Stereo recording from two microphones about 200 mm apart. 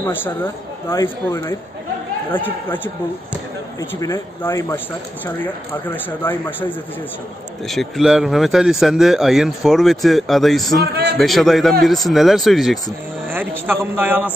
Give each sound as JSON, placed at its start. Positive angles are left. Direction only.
{"t": 0.0, "sound": "speech", "side_deg": 10}
{"t": 4.0, "sound": "speech", "side_deg": 15}
{"t": 7.6, "sound": "speech", "side_deg": 0}
{"t": 10.9, "sound": "a man's voice", "side_deg": -55}
{"t": 11.1, "sound": "a man's voice", "side_deg": 0}